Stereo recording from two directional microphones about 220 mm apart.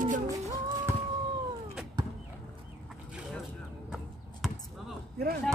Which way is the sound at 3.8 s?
Centre (ahead or behind).